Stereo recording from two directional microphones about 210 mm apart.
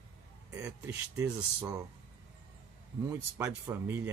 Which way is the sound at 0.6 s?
10° right (ahead or behind).